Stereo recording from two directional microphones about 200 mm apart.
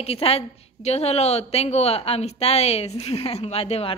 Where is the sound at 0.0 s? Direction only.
30° left (ahead or behind).